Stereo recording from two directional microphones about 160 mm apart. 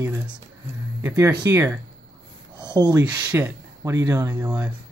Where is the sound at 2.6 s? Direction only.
25° right (ahead or behind).